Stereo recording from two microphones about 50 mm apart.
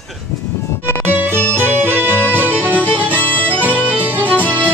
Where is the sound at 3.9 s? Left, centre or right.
Right.